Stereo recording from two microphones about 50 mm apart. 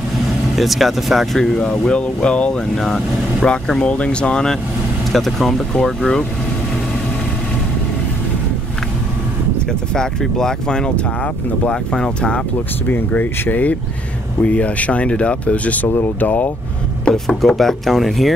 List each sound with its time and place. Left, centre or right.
0.6 s speech: centre
1.6 s speech: centre
2.8 s speech: centre
3.8 s speech: left
5.1 s speech: centre
9.7 s speech: centre
12.8 s speech: left
17.1 s speech: centre